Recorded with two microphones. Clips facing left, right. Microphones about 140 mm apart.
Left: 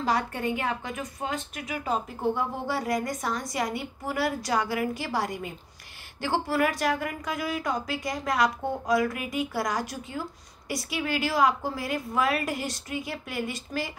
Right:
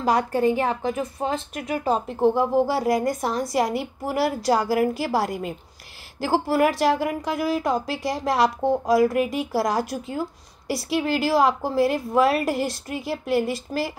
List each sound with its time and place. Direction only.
0.0 s a woman's voice: 40° right (ahead or behind)